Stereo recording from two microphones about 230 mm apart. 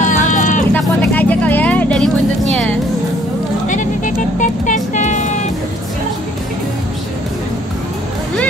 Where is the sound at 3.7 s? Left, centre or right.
Left.